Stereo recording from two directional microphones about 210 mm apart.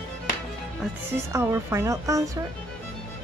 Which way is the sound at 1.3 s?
10° right (ahead or behind).